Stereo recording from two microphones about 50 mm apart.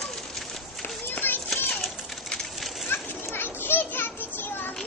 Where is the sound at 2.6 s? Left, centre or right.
Centre.